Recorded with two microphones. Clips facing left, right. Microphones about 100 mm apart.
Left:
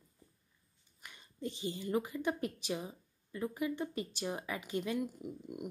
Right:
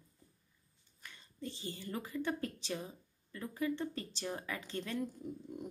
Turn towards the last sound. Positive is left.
turn(degrees=15)  # may be behind; listen again after turning